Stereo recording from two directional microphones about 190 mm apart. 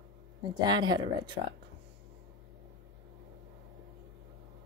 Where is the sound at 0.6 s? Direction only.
25° right (ahead or behind).